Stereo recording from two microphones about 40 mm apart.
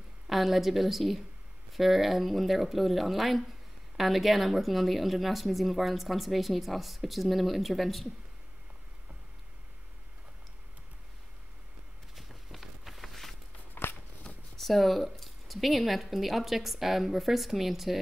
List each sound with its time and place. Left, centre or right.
0.3 s a woman's voice: centre
12.2 s walk: centre
13.8 s a sound: left
14.6 s a woman's voice: centre